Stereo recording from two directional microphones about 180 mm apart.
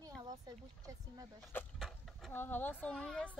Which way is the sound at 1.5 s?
Centre (ahead or behind).